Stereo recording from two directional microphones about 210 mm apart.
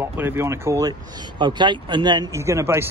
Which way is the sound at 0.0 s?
10° right (ahead or behind).